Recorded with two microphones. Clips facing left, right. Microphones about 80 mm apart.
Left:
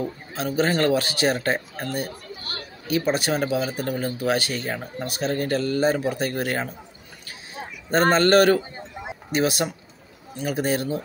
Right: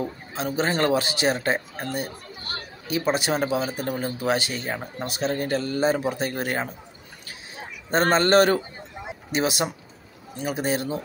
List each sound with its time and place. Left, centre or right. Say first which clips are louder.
0.0 s a man's voice: left 1 dB; right
8.1 s a man's voice: left 1 dB; right